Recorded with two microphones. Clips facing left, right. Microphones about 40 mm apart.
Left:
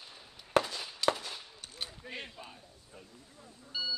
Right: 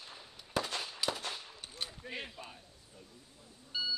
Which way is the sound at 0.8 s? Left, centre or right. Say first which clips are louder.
Left 5 dB; centre.